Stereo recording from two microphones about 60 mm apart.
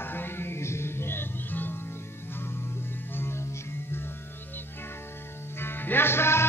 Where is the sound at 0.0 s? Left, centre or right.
Left.